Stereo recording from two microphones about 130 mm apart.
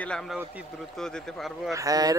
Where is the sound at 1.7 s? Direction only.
25° right (ahead or behind).